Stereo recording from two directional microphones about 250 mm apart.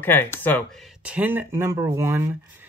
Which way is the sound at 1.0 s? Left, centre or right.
Centre.